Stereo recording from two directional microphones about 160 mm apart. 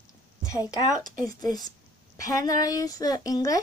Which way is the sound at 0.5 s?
20° left (ahead or behind).